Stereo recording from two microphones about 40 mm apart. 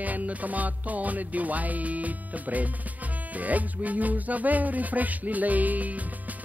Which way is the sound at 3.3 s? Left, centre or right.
Right.